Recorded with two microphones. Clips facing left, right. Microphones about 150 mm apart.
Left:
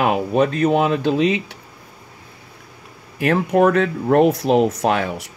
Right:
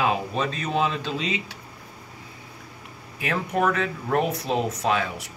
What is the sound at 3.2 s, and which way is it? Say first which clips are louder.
Speech: left 9 dB; 65° left (ahead or behind).